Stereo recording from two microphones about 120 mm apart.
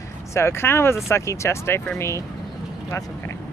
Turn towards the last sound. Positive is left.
turn(degrees=25)  # may be behind; listen again after turning